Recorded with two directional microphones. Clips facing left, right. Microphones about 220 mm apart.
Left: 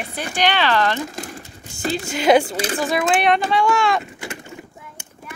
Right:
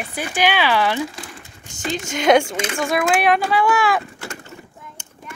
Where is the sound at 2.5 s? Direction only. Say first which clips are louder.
Left 1 dB; 35° left (ahead or behind).